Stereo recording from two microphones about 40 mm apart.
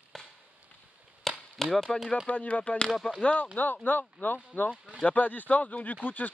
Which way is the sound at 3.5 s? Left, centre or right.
Left.